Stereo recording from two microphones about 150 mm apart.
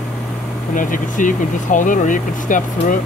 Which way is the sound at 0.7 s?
60° left (ahead or behind).